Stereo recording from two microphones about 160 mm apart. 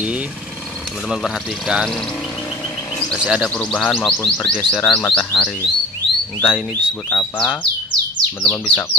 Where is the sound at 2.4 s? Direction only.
15° left (ahead or behind).